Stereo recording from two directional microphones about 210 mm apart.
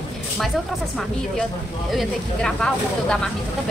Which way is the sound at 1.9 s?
Centre (ahead or behind).